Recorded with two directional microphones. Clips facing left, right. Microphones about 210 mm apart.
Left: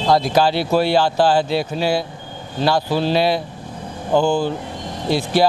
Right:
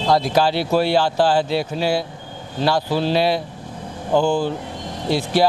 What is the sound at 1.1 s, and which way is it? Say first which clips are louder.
Speech: left 1 dB; 35° left (ahead or behind).